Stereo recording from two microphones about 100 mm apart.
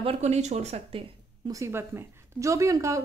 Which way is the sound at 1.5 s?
30° right (ahead or behind).